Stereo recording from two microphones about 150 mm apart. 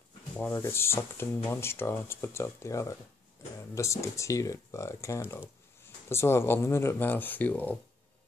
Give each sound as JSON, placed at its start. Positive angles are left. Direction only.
{"t": 0.4, "sound": "speech", "side_deg": 15}